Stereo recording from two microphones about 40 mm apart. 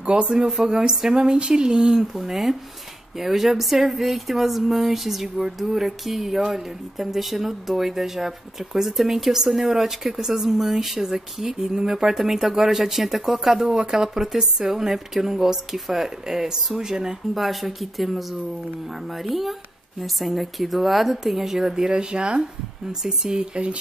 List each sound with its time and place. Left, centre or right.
0.0 s speech: right
2.1 s speech: centre; by 23.8 s right